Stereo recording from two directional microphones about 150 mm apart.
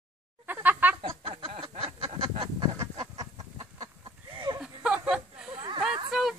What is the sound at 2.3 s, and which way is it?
Chicken, 40° right (ahead or behind).